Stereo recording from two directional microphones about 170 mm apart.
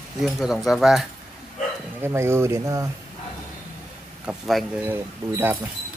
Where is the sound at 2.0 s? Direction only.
15° right (ahead or behind).